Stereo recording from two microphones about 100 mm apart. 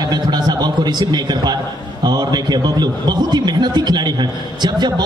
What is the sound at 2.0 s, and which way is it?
A man's voice, 45° right (ahead or behind).